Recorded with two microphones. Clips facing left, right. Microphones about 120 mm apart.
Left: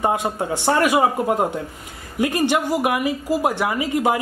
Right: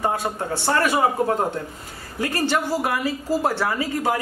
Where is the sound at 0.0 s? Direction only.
20° left (ahead or behind).